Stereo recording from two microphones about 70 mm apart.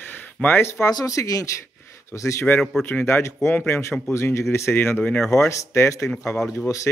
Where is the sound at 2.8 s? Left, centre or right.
Left.